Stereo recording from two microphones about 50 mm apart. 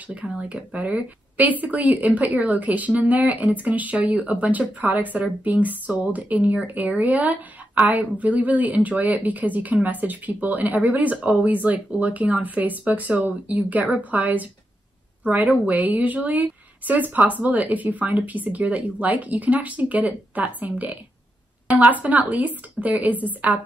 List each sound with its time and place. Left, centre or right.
0.4 s speech: right